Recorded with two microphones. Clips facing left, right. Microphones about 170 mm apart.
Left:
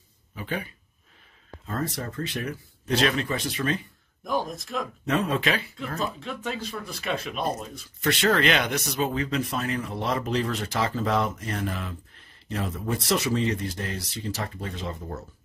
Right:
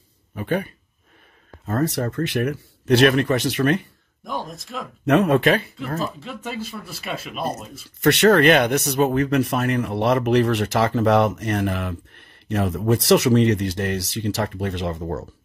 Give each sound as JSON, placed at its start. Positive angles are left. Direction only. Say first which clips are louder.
{"t": 0.3, "sound": "speech", "louder": "right 8 dB", "side_deg": -55}
{"t": 1.8, "sound": "speech", "louder": "right 8 dB", "side_deg": -70}
{"t": 4.2, "sound": "speech", "louder": "left 2 dB", "side_deg": 0}
{"t": 5.0, "sound": "speech", "louder": "right 9 dB", "side_deg": -70}
{"t": 6.1, "sound": "speech", "louder": "right 2 dB", "side_deg": -5}
{"t": 8.0, "sound": "speech", "louder": "right 8 dB", "side_deg": -65}